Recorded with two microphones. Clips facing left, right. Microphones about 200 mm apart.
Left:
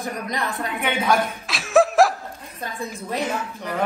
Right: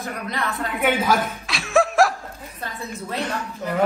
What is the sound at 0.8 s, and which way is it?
Chuckle, 5° right (ahead or behind).